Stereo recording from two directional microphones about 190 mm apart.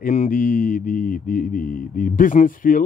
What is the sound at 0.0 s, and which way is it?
Mantra, 40° left (ahead or behind).